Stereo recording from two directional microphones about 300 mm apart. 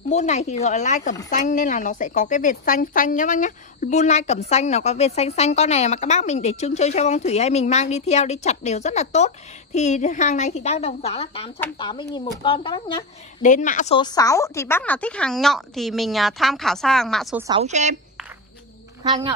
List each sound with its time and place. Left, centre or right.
0.1 s a woman's voice: left; by 17.5 s centre
17.5 s a woman's voice: right
19.0 s a woman's voice: centre